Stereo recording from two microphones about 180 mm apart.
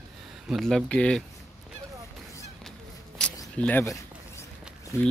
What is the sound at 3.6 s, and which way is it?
Speech, 10° left (ahead or behind).